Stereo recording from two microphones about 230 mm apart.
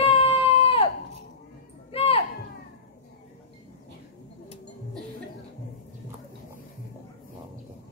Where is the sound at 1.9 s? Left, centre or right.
Left.